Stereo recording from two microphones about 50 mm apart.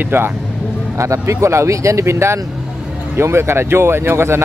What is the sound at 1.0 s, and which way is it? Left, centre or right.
Speech, right.